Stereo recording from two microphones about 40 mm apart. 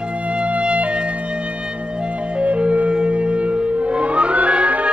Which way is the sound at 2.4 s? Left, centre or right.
Right.